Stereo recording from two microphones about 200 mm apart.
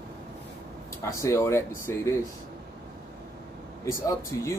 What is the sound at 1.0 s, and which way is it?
Speech, 15° left (ahead or behind).